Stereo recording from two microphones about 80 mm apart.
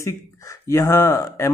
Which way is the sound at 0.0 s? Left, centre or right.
Left.